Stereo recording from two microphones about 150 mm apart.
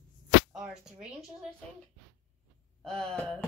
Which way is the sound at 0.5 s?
5° right (ahead or behind).